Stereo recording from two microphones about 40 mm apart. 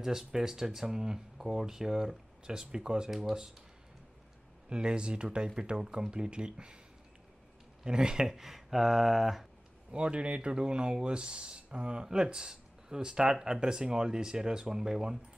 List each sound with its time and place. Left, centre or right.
0.0 s speech: centre
4.6 s speech: right
7.8 s speech: centre
8.3 s speech: centre
9.8 s speech: right